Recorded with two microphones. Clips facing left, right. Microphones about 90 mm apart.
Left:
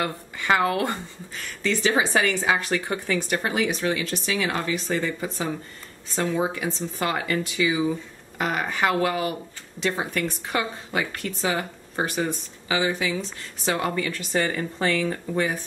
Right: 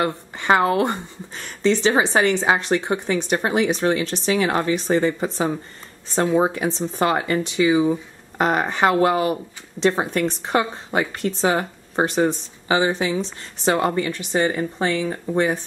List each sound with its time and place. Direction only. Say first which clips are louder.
0.0 s speech: right 5 dB; 30° right (ahead or behind)
6.1 s speech: right 6 dB; 25° right (ahead or behind)
6.4 s speech: right 5 dB; 40° right (ahead or behind)